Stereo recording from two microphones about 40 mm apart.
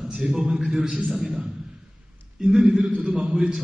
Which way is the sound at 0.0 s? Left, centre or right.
Centre.